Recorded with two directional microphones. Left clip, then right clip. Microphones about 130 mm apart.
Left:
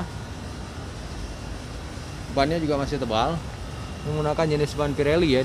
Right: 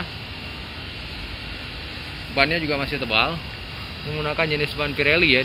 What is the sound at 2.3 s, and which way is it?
Speech, 25° left (ahead or behind).